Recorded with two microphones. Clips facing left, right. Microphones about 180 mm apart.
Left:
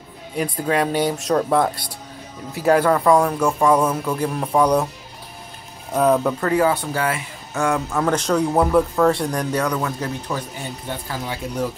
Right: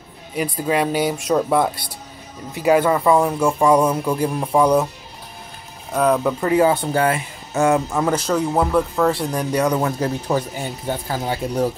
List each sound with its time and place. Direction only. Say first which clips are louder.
0.4 s a man's voice: right 1 dB; 5° right (ahead or behind)
5.9 s a man's voice: even; centre (ahead or behind)
6.4 s speech: right 2 dB; 20° right (ahead or behind)
8.0 s a man's voice: even; 5° right (ahead or behind)
9.6 s speech: right 4 dB; 30° right (ahead or behind)